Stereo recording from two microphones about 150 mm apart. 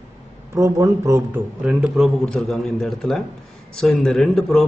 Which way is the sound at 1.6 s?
5° right (ahead or behind).